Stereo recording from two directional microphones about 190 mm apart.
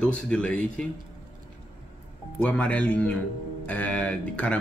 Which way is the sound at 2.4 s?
5° left (ahead or behind).